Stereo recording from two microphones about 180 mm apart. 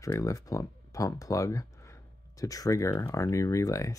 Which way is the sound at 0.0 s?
20° left (ahead or behind).